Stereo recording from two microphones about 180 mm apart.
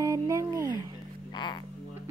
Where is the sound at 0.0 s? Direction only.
20° right (ahead or behind).